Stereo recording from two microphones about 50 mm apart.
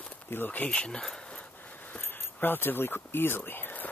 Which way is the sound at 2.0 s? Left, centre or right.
Left.